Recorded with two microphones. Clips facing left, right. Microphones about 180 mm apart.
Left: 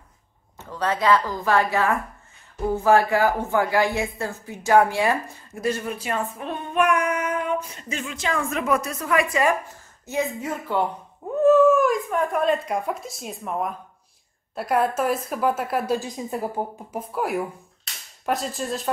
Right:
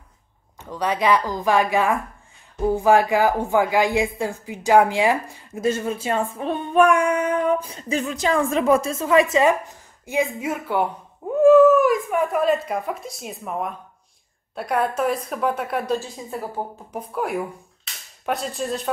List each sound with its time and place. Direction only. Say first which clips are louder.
0.7 s a woman's voice: right 1 dB; 15° right (ahead or behind)
10.0 s a woman's voice: right 3 dB; 10° right (ahead or behind)
16.0 s a woman's voice: left 3 dB; 15° left (ahead or behind)
16.9 s a woman's voice: right 1 dB; centre (ahead or behind)